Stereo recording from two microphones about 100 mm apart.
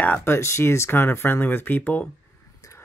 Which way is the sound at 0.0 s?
20° left (ahead or behind).